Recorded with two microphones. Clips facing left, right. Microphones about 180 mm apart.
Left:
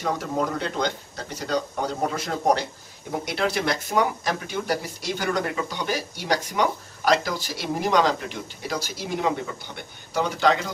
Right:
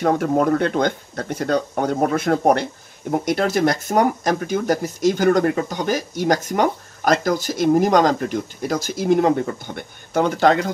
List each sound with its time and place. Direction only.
0.0 s speech: 55° right (ahead or behind)